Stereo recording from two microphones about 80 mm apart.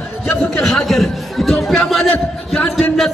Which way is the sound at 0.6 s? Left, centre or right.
Centre.